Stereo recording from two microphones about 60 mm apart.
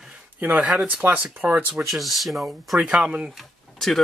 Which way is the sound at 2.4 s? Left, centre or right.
Centre.